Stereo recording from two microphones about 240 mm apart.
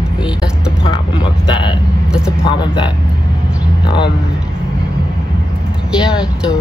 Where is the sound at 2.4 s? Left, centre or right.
Centre.